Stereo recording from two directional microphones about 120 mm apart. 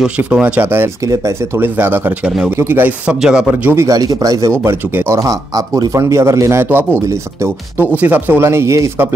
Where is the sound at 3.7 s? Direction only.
25° right (ahead or behind).